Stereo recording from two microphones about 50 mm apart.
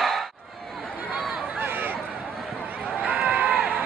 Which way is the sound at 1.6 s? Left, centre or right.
Right.